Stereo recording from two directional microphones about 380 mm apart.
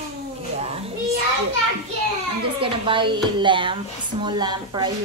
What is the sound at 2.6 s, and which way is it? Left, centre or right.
Speech, centre.